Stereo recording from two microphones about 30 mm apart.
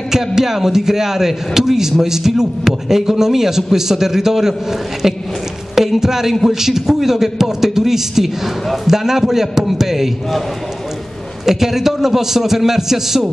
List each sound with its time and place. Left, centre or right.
0.1 s a man's voice: centre
11.4 s a man's voice: centre